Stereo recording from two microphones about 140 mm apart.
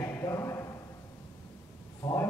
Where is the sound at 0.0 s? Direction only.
25° left (ahead or behind).